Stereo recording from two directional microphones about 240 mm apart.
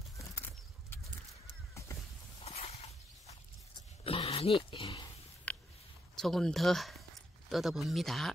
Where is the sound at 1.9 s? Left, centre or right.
Centre.